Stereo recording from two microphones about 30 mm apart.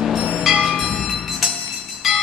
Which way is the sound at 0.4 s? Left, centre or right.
Centre.